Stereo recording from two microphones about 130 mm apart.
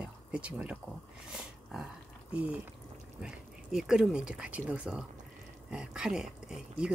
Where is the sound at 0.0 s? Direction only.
10° right (ahead or behind).